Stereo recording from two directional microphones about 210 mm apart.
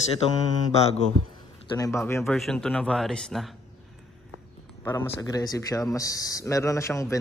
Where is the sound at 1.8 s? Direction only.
15° left (ahead or behind).